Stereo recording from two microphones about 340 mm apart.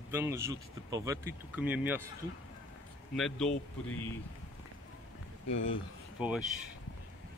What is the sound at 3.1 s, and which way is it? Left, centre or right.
Speech, centre.